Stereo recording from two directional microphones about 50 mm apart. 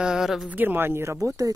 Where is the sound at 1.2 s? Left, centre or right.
Right.